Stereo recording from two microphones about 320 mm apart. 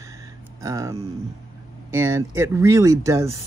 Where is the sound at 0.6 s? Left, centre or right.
Centre.